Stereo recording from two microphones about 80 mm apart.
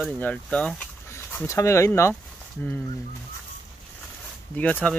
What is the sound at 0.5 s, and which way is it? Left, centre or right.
Speech, centre.